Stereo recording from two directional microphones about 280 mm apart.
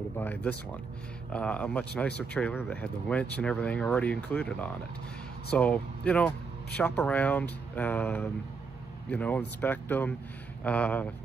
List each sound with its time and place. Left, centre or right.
0.2 s speech: centre